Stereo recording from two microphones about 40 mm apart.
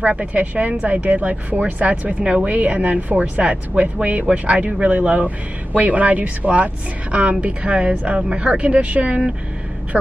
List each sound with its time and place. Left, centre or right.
0.0 s a woman's voice: right